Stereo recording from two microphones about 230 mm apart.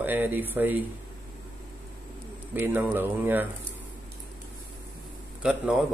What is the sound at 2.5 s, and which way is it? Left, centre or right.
Speech, centre.